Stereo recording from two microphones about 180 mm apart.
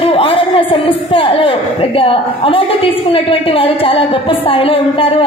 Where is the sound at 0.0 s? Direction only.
30° left (ahead or behind).